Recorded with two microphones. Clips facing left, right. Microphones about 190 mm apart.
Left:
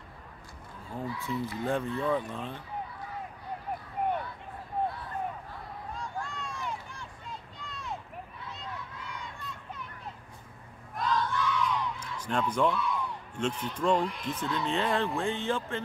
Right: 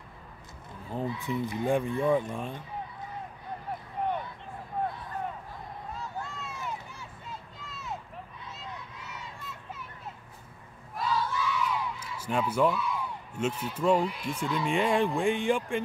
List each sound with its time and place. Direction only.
0.9 s speech: 20° right (ahead or behind)
5.9 s vehicle: 5° right (ahead or behind)
7.5 s a sound: 5° right (ahead or behind)
11.0 s battle cry: 5° right (ahead or behind)
15.1 s speech: 15° right (ahead or behind)